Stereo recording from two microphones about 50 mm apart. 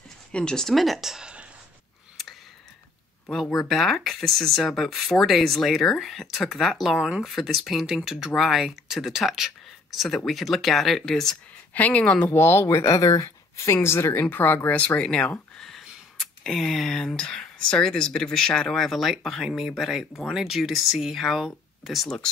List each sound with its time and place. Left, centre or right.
0.3 s speech: centre
0.7 s speech: centre
3.6 s speech: centre
7.0 s speech: centre
7.2 s speech: centre
11.7 s speech: left
12.3 s speech: left
13.7 s speech: left
14.3 s speech: left
15.5 s a sound: centre
16.2 s speech: centre
18.8 s speech: centre
22.0 s speech: centre